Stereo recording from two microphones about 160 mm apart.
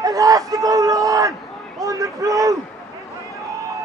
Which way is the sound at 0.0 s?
20° right (ahead or behind).